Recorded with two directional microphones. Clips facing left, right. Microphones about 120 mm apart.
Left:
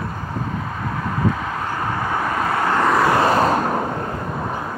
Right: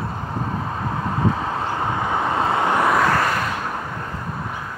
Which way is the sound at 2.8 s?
Centre (ahead or behind).